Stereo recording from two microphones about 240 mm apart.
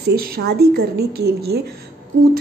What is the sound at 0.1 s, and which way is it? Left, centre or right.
A woman's voice, right.